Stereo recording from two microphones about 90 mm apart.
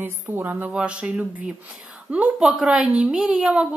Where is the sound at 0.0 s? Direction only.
20° right (ahead or behind).